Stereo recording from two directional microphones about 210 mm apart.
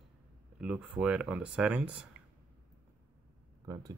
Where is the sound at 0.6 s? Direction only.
5° right (ahead or behind).